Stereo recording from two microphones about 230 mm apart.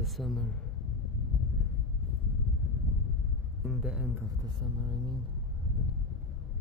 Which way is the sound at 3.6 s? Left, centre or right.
Centre.